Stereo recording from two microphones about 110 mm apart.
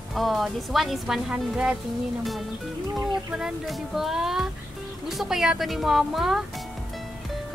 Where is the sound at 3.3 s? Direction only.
5° right (ahead or behind).